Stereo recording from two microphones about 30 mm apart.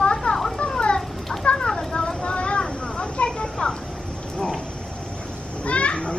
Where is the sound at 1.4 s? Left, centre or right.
Left.